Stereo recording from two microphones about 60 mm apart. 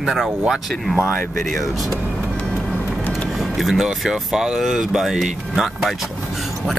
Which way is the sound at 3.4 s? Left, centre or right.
Centre.